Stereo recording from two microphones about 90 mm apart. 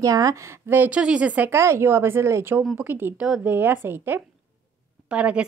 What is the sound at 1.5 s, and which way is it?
A woman's voice, 30° right (ahead or behind).